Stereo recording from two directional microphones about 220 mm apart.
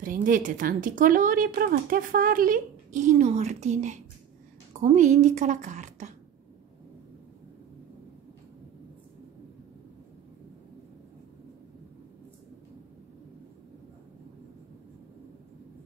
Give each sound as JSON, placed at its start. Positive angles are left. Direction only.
{"t": 0.0, "sound": "a woman's voice", "side_deg": -40}